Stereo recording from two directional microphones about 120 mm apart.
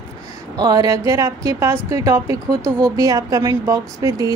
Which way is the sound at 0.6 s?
35° right (ahead or behind).